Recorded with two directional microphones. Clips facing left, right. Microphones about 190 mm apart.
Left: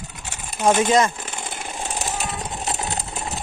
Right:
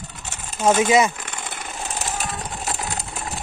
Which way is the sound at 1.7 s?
15° left (ahead or behind).